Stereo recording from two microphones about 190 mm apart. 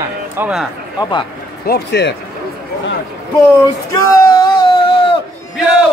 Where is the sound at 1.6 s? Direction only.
60° left (ahead or behind).